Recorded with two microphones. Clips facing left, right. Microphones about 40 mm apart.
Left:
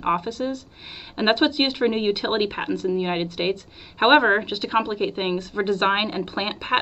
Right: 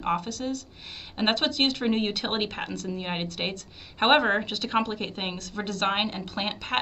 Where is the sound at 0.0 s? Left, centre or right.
Centre.